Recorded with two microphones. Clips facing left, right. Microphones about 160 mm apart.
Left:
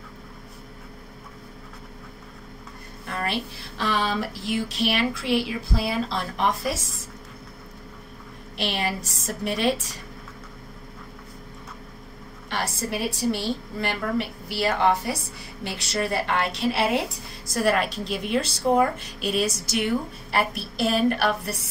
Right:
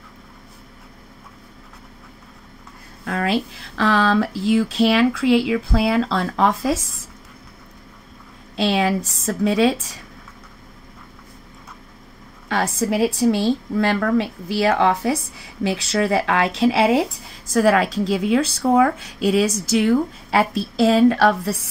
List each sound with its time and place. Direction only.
3.1 s a woman's voice: 85° right
8.8 s a woman's voice: 90° right
12.5 s a woman's voice: 90° right